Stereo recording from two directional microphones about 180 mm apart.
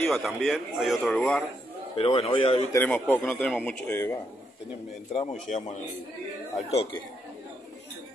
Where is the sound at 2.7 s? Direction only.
10° left (ahead or behind).